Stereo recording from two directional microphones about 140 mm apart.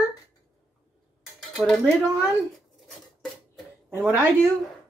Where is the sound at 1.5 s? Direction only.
Centre (ahead or behind).